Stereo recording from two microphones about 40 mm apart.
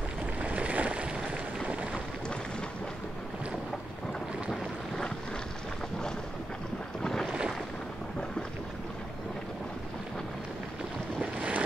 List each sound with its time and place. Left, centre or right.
0.4 s boat: right
4.5 s boat: centre
7.0 s boat: centre
11.3 s boat: right